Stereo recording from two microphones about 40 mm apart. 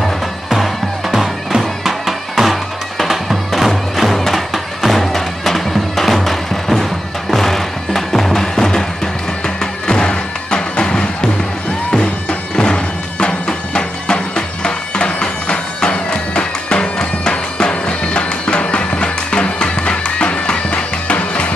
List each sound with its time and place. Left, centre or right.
0.0 s music: centre; by 21.5 s left